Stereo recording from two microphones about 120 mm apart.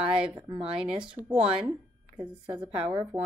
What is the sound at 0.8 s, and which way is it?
Speech, 5° right (ahead or behind).